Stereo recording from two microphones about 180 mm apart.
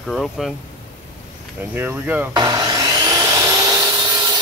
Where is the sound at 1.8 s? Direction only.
10° right (ahead or behind).